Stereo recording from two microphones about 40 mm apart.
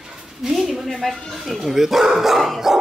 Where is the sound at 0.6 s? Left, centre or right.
Centre.